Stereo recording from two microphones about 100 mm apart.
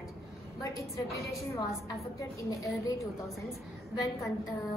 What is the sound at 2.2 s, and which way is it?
Speech, 30° left (ahead or behind).